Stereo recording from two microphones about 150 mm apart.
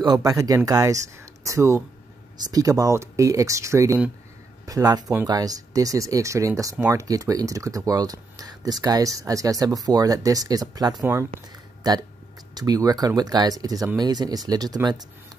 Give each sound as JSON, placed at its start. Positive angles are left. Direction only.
{"t": 0.0, "sound": "speech", "side_deg": -25}